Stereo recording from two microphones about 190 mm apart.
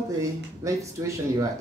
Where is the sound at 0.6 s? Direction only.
15° right (ahead or behind).